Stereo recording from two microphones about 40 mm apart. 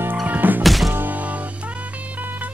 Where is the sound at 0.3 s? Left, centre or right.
Right.